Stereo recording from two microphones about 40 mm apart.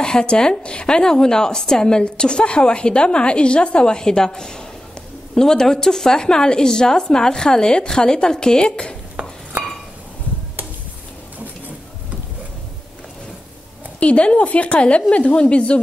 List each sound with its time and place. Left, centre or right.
0.0 s a woman's voice: left
9.2 s chink: right
13.9 s a woman's voice: left